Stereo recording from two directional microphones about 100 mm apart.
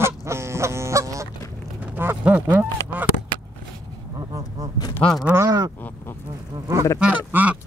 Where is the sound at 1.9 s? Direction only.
20° right (ahead or behind).